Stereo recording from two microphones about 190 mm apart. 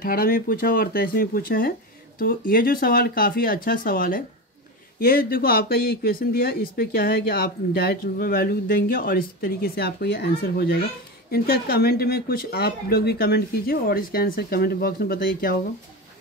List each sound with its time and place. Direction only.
0.0 s speech: 50° left (ahead or behind)